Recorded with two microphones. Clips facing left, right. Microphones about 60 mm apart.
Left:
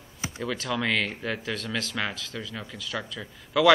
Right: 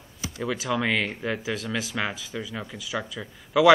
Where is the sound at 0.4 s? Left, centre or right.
Centre.